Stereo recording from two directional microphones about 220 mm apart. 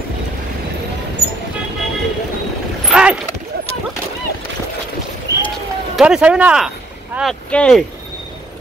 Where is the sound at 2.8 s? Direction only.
5° right (ahead or behind).